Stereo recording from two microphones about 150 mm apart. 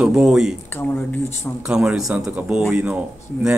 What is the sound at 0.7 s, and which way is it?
Speech, 15° left (ahead or behind).